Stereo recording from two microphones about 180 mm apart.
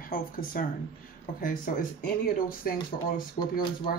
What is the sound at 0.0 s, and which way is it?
Speech, 50° left (ahead or behind).